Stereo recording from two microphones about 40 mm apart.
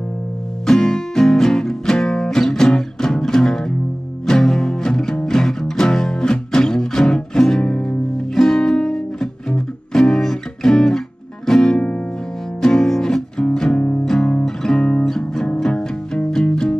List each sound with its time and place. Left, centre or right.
0.7 s music: centre
8.4 s music: centre